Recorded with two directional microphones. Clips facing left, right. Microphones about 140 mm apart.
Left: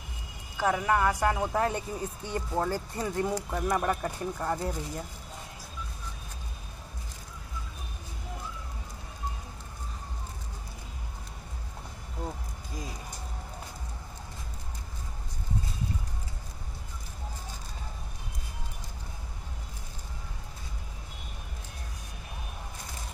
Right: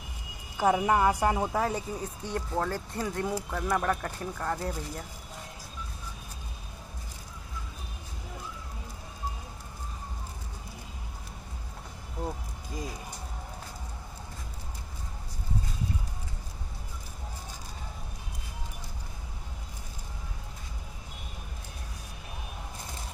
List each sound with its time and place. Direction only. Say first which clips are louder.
0.6 s speech: right 2 dB; 15° right (ahead or behind)
1.5 s speech: left 1 dB; centre (ahead or behind)
3.4 s speech: even; 15° left (ahead or behind)